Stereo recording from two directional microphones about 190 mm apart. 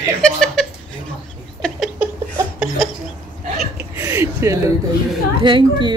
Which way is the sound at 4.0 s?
15° right (ahead or behind).